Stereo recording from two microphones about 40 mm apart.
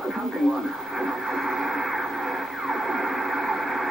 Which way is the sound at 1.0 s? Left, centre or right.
Centre.